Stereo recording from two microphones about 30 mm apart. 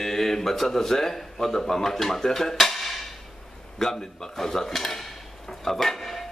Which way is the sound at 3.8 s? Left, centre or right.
Centre.